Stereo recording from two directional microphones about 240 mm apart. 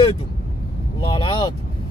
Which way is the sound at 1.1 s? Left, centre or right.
Centre.